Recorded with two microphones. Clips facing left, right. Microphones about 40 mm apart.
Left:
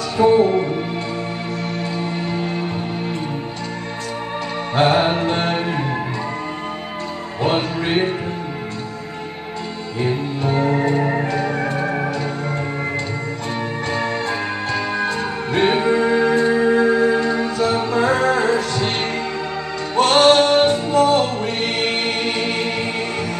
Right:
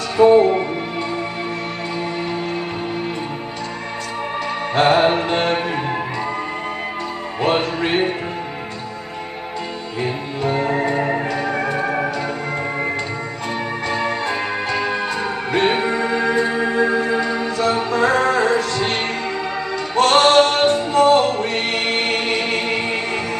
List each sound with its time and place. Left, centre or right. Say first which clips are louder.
0.2 s music: right 2 dB; centre
4.7 s music: right 1 dB; centre
5.2 s music: right 1 dB; right
7.4 s music: right 1 dB; centre
10.6 s music: left 3 dB; centre
11.5 s music: right 1 dB; right
11.8 s music: right 1 dB; centre
14.0 s music: right 1 dB; right
15.6 s music: left 4 dB; centre
16.7 s music: left 2 dB; centre
17.6 s music: right 1 dB; centre
20.0 s music: even; centre
21.8 s music: right 1 dB; centre